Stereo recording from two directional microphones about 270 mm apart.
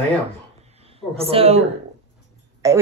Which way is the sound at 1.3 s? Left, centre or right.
Right.